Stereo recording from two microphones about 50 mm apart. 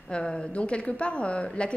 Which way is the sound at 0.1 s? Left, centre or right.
Left.